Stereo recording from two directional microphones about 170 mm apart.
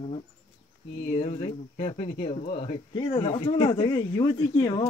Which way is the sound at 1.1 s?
35° left (ahead or behind).